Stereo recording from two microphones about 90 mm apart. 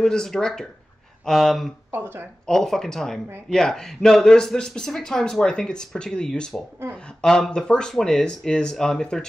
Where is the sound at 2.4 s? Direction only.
5° left (ahead or behind).